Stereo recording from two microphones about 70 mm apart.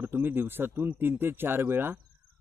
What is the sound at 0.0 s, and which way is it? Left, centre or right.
Speech, right.